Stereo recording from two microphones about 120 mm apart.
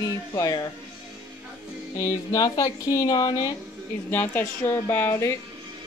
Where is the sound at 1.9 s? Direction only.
25° left (ahead or behind).